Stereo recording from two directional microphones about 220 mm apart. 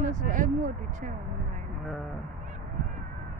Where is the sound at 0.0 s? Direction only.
35° right (ahead or behind).